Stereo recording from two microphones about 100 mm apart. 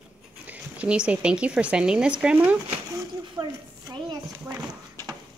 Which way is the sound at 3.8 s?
40° right (ahead or behind).